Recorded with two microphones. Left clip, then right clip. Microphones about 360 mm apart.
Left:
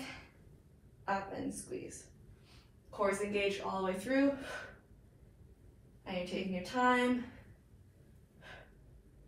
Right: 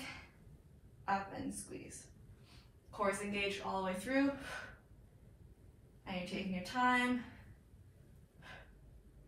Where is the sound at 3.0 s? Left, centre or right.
Centre.